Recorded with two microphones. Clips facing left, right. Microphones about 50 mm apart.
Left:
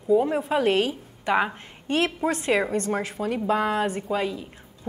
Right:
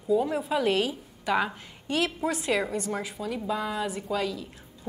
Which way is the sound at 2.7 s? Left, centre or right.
Left.